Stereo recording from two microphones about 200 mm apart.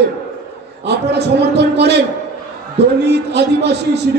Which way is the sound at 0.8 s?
55° right (ahead or behind).